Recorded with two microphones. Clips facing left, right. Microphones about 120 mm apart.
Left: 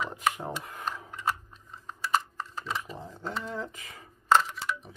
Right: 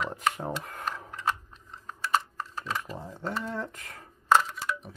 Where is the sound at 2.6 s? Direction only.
Centre (ahead or behind).